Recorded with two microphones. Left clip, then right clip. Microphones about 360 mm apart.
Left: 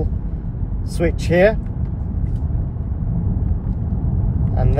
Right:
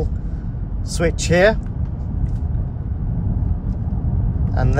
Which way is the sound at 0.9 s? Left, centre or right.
Right.